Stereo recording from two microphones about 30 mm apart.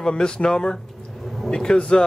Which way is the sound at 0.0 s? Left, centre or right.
Left.